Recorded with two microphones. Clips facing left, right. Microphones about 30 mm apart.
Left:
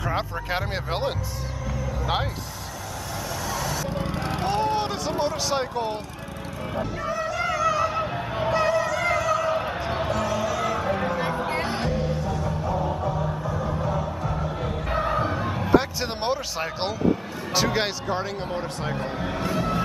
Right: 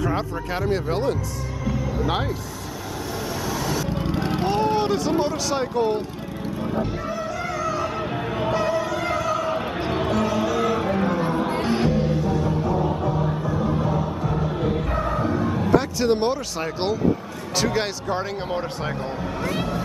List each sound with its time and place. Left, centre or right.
0.0 s speech: centre
3.4 s vehicle: centre
8.0 s a sound: centre
9.8 s music: centre
13.8 s music: centre
14.9 s a sound: centre
17.6 s speech: centre
18.5 s speech: centre